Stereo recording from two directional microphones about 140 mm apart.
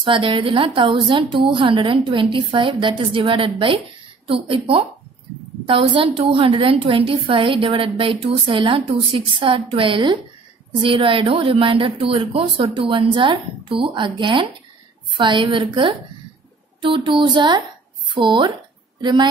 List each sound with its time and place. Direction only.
0.0 s a woman's voice: 40° right (ahead or behind)